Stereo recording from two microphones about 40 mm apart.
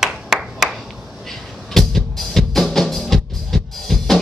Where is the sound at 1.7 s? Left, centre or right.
Centre.